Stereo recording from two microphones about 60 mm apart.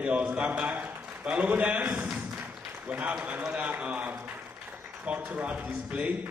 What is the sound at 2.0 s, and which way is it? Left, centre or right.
Tap, right.